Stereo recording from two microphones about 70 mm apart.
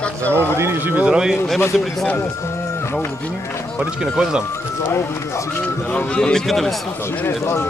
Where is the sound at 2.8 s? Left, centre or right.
Left.